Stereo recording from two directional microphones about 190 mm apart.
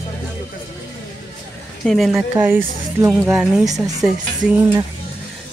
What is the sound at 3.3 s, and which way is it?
Speech, centre (ahead or behind).